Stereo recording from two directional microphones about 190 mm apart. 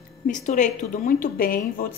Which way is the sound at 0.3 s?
40° left (ahead or behind).